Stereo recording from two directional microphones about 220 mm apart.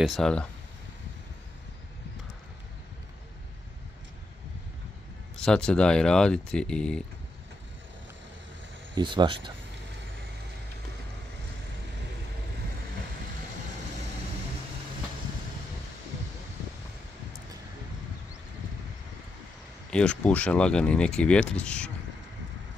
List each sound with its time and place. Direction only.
0.0 s speech: centre (ahead or behind)
5.3 s speech: 5° left (ahead or behind)
8.9 s speech: 20° right (ahead or behind)
19.9 s speech: 5° left (ahead or behind)